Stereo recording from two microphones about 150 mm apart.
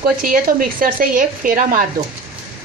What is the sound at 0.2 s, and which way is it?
A woman's voice, 70° right (ahead or behind).